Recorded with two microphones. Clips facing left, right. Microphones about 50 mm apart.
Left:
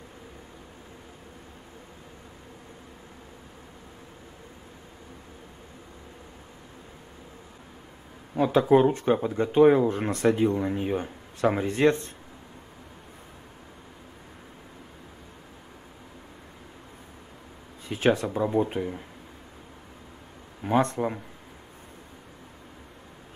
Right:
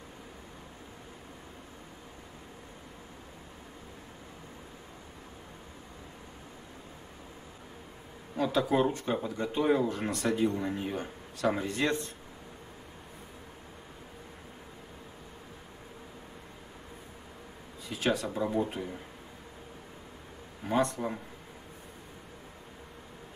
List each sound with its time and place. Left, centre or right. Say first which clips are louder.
8.4 s speech: left 7 dB; left
17.8 s speech: left 7 dB; left
20.7 s speech: left 5 dB; left